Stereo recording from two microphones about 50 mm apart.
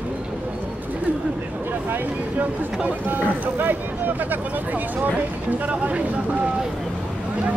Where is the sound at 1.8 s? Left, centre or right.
Right.